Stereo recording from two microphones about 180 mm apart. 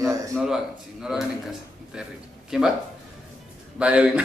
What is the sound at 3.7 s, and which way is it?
Speech, 5° right (ahead or behind).